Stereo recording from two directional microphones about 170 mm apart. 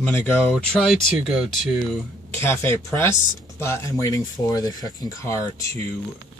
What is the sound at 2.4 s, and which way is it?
Speech, 15° left (ahead or behind).